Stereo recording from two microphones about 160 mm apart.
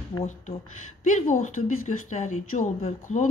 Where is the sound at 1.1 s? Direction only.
55° left (ahead or behind).